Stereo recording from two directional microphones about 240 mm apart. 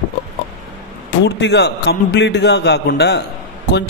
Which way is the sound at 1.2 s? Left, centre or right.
Left.